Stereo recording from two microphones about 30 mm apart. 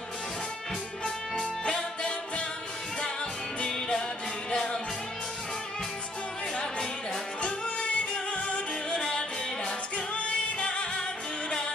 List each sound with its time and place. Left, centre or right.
1.4 s music: left
7.4 s music: left
8.9 s music: left
9.9 s music: left